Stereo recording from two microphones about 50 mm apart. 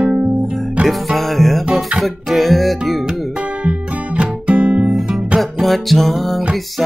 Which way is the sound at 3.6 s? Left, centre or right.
Right.